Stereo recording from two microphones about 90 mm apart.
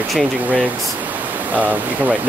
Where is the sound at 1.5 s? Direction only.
15° right (ahead or behind).